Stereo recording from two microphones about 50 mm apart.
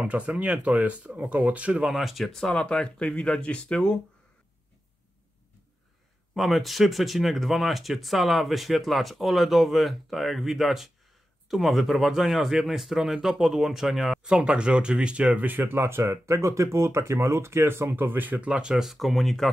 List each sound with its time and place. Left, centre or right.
0.0 s speech: right
1.8 s speech: centre
2.5 s speech: centre
6.3 s speech: centre
14.3 s speech: right
15.4 s speech: right
18.4 s speech: centre
18.8 s speech: centre